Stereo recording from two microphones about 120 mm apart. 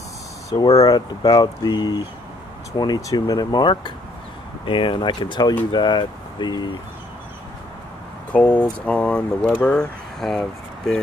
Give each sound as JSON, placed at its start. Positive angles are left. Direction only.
{"t": 0.5, "sound": "speech", "side_deg": 30}
{"t": 8.3, "sound": "speech", "side_deg": 10}